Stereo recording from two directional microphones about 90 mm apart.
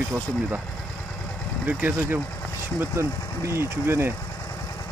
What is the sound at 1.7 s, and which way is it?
Speech, 20° right (ahead or behind).